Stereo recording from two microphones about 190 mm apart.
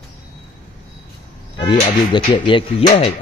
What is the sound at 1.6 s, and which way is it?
Speech, 25° left (ahead or behind).